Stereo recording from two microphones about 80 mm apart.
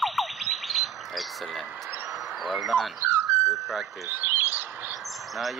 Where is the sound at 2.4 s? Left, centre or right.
Centre.